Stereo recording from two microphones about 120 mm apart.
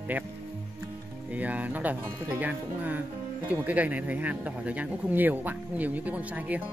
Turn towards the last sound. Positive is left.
turn(degrees=-15)  # may be behind; listen again after turning